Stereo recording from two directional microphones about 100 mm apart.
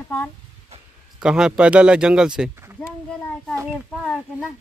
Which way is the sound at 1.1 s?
5° right (ahead or behind).